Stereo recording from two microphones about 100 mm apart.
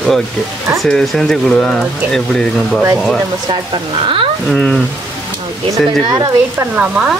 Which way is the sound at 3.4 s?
60° right (ahead or behind).